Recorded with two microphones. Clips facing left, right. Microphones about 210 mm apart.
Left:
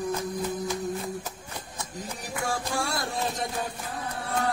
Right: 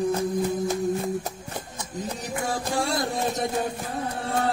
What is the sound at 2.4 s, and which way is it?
Music, 20° right (ahead or behind).